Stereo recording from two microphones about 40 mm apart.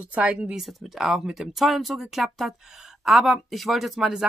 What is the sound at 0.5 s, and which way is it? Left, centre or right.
A woman's voice, centre.